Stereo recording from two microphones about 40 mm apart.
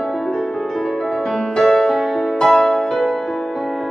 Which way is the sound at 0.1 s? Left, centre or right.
Centre.